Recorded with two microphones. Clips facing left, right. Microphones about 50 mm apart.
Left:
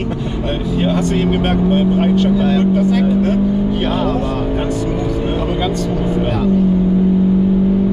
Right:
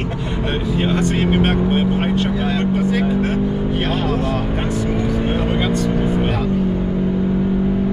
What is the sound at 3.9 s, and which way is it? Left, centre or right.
Music, centre.